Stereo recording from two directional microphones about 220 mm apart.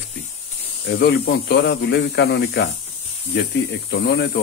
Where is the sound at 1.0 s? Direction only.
50° left (ahead or behind).